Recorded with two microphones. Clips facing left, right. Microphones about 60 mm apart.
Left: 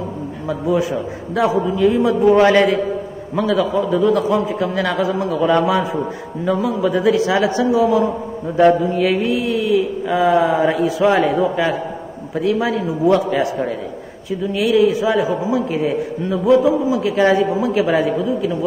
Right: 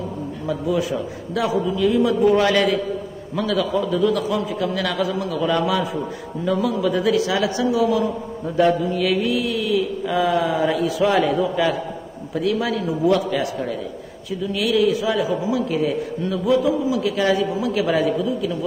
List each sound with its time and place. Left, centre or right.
0.5 s a man's voice: left